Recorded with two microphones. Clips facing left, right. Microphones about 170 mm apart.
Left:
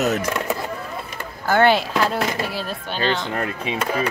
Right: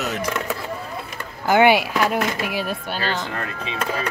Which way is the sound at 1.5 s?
15° right (ahead or behind).